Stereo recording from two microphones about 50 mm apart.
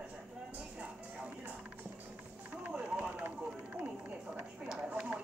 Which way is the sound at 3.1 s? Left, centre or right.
Right.